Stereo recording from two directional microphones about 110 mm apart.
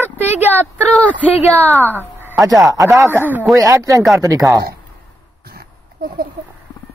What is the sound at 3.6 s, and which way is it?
Speech, 30° right (ahead or behind).